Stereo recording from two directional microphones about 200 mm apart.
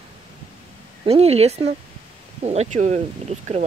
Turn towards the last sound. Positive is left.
turn(degrees=-35)  # may be behind; listen again after turning